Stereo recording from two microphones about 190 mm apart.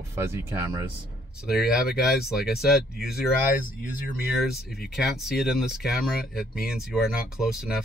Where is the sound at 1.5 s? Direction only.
Centre (ahead or behind).